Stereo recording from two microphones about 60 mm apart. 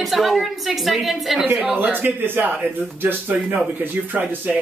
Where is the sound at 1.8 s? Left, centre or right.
Right.